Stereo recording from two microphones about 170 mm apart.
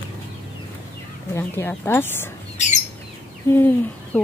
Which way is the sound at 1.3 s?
15° left (ahead or behind).